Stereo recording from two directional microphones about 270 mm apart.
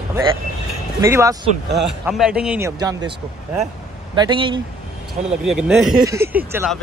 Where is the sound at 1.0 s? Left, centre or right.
Centre.